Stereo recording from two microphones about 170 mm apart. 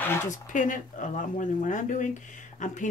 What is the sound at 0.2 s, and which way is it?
Speech, 45° left (ahead or behind).